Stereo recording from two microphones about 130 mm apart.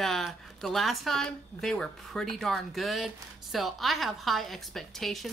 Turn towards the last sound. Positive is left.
turn(degrees=0)  # may be behind; listen again after turning